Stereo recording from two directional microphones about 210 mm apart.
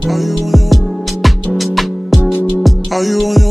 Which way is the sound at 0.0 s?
Centre (ahead or behind).